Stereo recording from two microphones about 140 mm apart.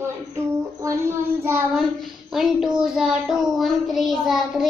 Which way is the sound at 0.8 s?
20° right (ahead or behind).